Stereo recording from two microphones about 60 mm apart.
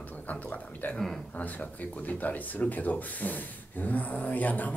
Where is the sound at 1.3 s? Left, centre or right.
Left.